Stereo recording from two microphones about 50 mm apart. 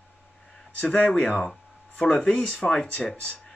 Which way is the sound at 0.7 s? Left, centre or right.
Left.